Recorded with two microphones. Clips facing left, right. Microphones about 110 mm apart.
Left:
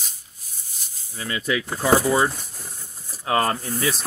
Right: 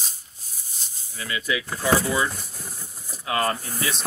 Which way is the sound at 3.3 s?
35° left (ahead or behind).